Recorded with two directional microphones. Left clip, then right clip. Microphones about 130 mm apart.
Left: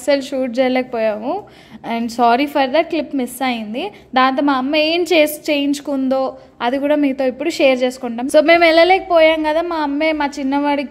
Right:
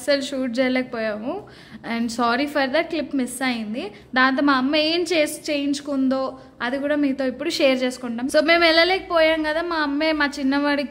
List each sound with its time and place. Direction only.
0.0 s a woman's voice: 20° left (ahead or behind)